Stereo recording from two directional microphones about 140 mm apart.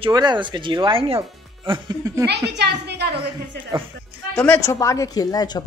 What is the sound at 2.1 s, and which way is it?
Speech, 25° right (ahead or behind).